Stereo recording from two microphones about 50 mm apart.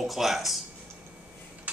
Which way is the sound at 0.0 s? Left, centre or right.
Centre.